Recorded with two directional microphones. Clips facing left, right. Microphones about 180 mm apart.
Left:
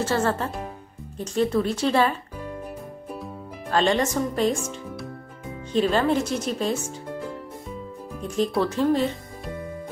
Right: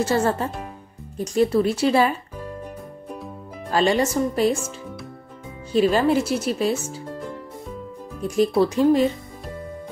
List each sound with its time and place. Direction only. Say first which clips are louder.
0.0 s speech: right 3 dB; 15° right (ahead or behind)
3.7 s speech: right 2 dB; 10° right (ahead or behind)
5.7 s speech: right 3 dB; 10° right (ahead or behind)
8.2 s speech: right 5 dB; 10° right (ahead or behind)